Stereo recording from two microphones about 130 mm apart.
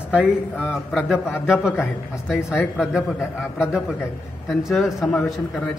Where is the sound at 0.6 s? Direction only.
5° right (ahead or behind).